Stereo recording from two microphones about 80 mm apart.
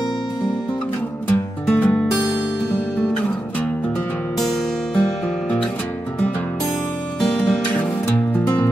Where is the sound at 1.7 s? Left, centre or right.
Left.